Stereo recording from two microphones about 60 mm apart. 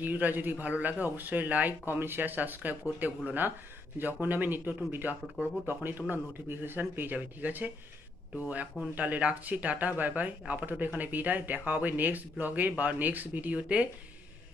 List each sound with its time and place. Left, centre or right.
0.0 s speech: right